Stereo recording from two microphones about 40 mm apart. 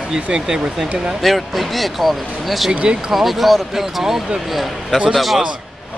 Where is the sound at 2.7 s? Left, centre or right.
Right.